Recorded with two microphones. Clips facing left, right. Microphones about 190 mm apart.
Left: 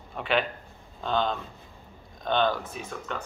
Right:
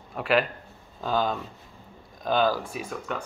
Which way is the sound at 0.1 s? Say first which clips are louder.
Right 3 dB; 5° right (ahead or behind).